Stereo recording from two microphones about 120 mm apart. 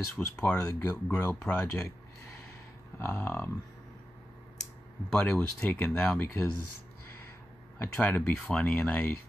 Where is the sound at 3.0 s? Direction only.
15° left (ahead or behind).